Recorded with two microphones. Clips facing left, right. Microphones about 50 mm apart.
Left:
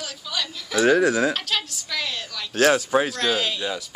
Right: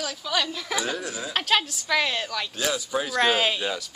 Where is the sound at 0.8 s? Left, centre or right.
Left.